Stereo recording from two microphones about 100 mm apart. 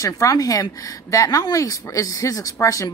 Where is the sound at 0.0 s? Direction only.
35° left (ahead or behind).